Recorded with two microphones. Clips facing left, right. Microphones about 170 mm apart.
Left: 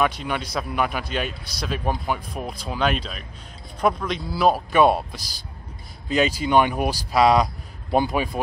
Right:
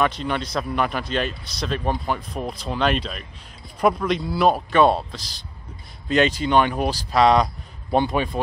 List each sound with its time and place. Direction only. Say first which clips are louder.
0.0 s a man's voice: right 1 dB; 5° left (ahead or behind)